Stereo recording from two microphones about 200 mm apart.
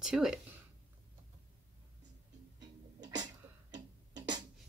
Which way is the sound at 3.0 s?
20° right (ahead or behind).